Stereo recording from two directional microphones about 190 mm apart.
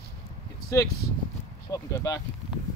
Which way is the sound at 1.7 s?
20° left (ahead or behind).